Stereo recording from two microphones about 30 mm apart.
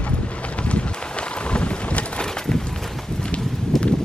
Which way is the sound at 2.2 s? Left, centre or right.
Left.